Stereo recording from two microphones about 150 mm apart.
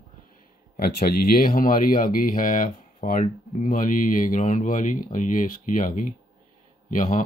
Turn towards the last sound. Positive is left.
turn(degrees=60)  # may be behind; listen again after turning